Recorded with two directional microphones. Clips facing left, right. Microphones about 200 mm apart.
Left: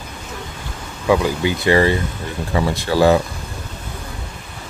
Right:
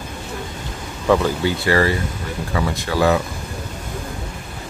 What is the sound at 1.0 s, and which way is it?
Speech, 10° left (ahead or behind).